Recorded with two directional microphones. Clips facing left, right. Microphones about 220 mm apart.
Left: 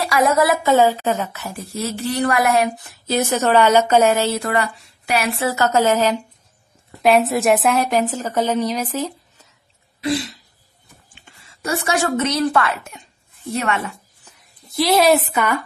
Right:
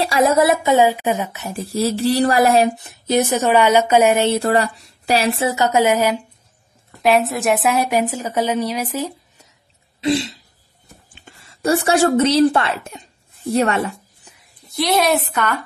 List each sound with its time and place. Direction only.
0.0 s a woman's voice: 30° right (ahead or behind)
0.7 s a woman's voice: 15° right (ahead or behind)
4.5 s a woman's voice: 35° right (ahead or behind); by 6.2 s 10° right (ahead or behind)
7.0 s a woman's voice: centre (ahead or behind)
9.9 s speech: 25° right (ahead or behind)
11.6 s a woman's voice: 35° right (ahead or behind)
14.7 s a woman's voice: centre (ahead or behind)